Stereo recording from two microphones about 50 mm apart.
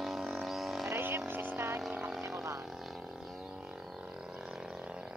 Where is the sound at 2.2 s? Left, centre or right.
Right.